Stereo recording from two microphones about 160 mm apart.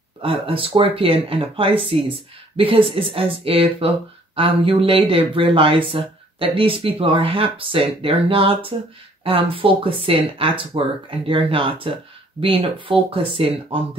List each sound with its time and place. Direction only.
0.2 s speech: 35° right (ahead or behind)